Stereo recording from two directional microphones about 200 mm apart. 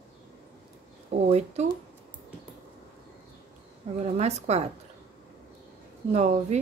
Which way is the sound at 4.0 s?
30° right (ahead or behind).